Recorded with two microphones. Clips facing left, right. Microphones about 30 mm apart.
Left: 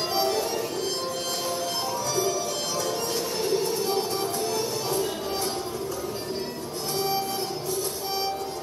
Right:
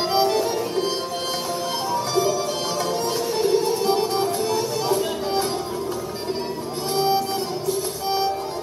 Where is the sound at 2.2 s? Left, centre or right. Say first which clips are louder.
Right 5 dB; right.